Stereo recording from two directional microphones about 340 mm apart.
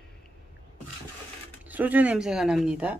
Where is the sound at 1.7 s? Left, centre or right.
Centre.